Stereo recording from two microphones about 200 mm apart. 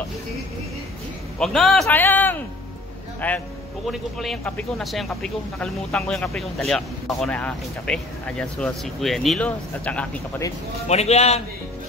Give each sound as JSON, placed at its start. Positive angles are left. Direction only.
{"t": 1.4, "sound": "a man's voice", "side_deg": 0}
{"t": 10.9, "sound": "a man's voice", "side_deg": 35}